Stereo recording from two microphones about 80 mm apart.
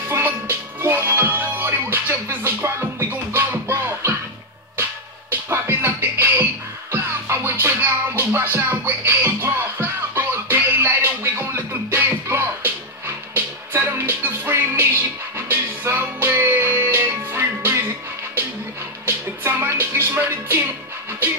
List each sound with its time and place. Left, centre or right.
0.1 s music: right
5.3 s music: right